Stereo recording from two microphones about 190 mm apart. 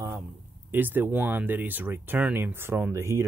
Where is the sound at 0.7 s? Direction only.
10° right (ahead or behind).